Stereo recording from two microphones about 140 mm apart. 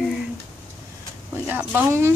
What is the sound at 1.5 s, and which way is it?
Speech, 15° right (ahead or behind).